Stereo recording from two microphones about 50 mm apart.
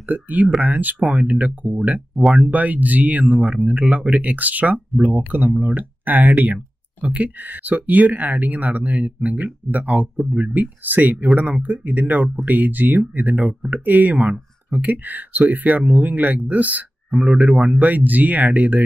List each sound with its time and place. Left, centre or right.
0.0 s speech: right
2.1 s speech: centre
2.4 s speech: right